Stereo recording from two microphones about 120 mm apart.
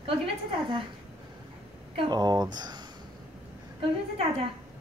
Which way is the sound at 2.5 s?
35° right (ahead or behind).